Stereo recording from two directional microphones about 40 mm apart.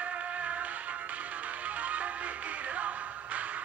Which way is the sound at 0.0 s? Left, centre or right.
Right.